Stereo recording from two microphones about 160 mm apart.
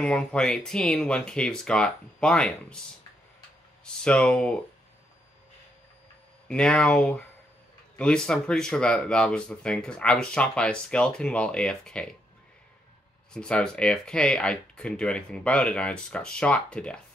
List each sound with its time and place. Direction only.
0.0 s speech: 5° left (ahead or behind)
3.8 s speech: 5° left (ahead or behind)
6.4 s speech: 5° left (ahead or behind)
13.3 s speech: 5° left (ahead or behind)